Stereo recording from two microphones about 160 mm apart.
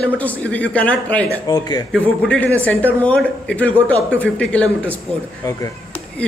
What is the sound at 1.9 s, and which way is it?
A man's voice, 5° left (ahead or behind).